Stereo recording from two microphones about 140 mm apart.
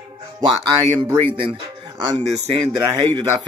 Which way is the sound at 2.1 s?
55° right (ahead or behind).